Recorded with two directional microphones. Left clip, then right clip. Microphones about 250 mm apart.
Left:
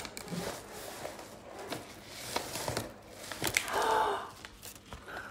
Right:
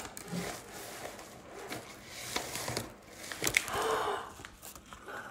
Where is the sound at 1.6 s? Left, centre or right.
Centre.